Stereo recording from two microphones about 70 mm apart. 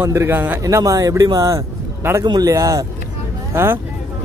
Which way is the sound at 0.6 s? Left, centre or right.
Right.